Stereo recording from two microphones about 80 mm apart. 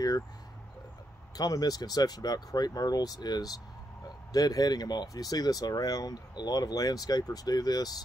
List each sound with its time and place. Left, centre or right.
1.3 s speech: left